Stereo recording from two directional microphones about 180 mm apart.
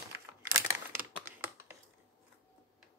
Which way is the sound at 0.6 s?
10° right (ahead or behind).